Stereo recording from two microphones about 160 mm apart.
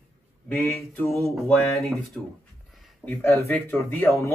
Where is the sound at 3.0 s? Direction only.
15° left (ahead or behind).